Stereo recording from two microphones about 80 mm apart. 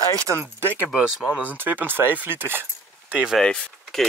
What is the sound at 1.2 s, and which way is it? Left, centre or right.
Speech, centre.